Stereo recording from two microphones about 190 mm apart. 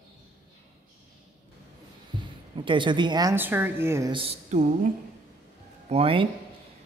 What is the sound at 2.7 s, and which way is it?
Speech, 25° right (ahead or behind).